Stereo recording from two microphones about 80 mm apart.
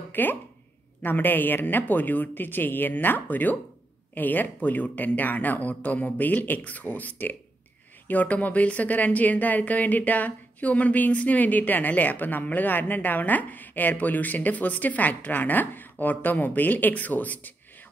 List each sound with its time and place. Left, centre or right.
0.1 s speech: left